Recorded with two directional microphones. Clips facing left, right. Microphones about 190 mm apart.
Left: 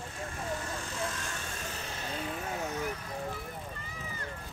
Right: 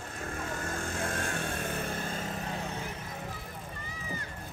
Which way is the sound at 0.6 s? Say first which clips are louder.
Right 2 dB; 50° right (ahead or behind).